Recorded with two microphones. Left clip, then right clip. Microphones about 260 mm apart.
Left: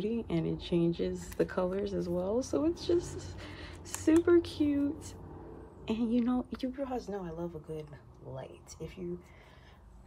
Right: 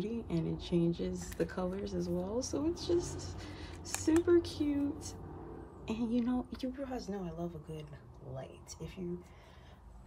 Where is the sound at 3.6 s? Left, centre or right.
Centre.